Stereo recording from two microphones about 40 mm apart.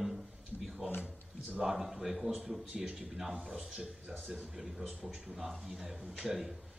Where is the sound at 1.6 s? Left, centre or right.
Centre.